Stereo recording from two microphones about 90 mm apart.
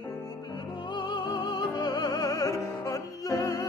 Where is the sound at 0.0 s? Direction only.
45° left (ahead or behind).